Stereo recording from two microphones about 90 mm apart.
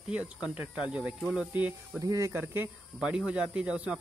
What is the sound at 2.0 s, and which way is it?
Speech, 35° right (ahead or behind).